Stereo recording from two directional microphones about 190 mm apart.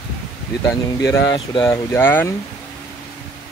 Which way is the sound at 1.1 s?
20° left (ahead or behind).